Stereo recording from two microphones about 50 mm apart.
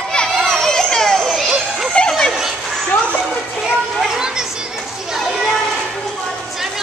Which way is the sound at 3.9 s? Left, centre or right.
Centre.